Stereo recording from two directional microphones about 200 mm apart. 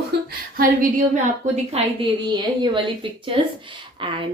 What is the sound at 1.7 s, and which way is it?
A woman's voice, 30° right (ahead or behind).